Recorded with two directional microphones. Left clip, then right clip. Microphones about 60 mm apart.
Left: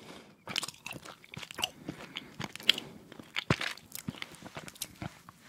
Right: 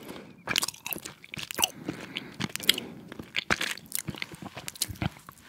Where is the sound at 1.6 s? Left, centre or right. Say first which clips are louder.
Right 7 dB; right.